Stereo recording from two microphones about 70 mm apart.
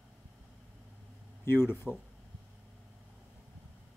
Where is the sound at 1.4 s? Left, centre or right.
Left.